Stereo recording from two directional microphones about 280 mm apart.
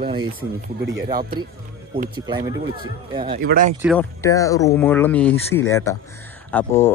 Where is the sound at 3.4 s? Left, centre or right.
Right.